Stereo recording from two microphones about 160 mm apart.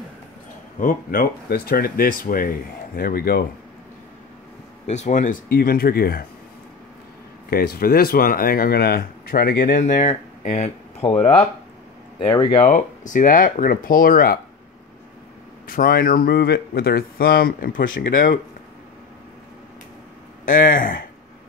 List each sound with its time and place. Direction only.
0.7 s speech: 60° left (ahead or behind)
4.8 s speech: 45° left (ahead or behind); by 6.2 s 70° left (ahead or behind)
7.4 s speech: 70° left (ahead or behind); by 11.1 s 40° left (ahead or behind)
12.2 s speech: 30° left (ahead or behind)
12.5 s speech: 50° left (ahead or behind)
15.6 s speech: 60° left (ahead or behind)
20.4 s speech: 55° left (ahead or behind)